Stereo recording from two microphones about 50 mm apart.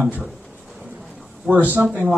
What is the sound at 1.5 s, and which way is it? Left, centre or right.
Speech, right.